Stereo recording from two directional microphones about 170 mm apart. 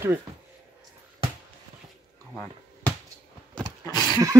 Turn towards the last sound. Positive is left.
turn(degrees=-20)  # may be behind; listen again after turning